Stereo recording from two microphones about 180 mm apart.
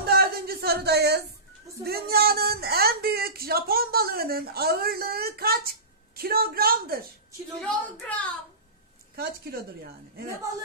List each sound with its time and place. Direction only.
0.1 s a sound: 60° right (ahead or behind)
1.9 s speech: 60° right (ahead or behind)
7.6 s a woman's voice: 5° left (ahead or behind)
9.1 s speech: 60° right (ahead or behind)